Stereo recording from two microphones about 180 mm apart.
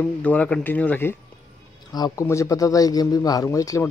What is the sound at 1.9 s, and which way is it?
Speech, 20° left (ahead or behind).